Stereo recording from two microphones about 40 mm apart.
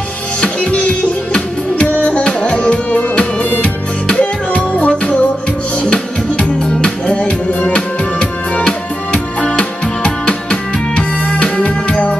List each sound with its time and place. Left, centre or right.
0.4 s music: left